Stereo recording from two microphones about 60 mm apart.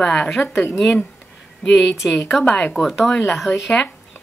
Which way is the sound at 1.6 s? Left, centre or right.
Centre.